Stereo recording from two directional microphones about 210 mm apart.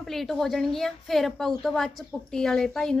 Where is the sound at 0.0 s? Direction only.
Centre (ahead or behind).